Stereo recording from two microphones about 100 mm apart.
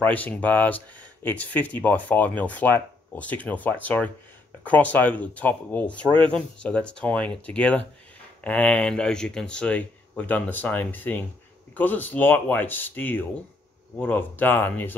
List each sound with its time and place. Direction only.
0.0 s speech: 15° left (ahead or behind)